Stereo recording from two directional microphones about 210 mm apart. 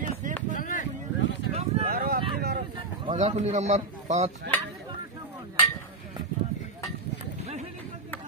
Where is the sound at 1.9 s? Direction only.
45° right (ahead or behind).